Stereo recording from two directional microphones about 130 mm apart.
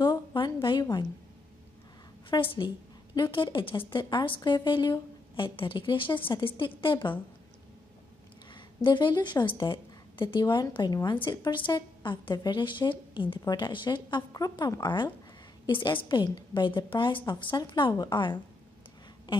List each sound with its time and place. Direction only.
0.0 s a sound: 35° left (ahead or behind)
2.2 s a woman's voice: 40° left (ahead or behind)
8.5 s a woman's voice: 35° left (ahead or behind)